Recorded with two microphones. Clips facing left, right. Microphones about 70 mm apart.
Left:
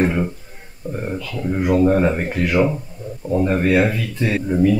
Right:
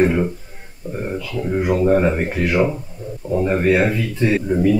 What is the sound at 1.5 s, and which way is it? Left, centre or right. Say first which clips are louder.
Speech: even; centre.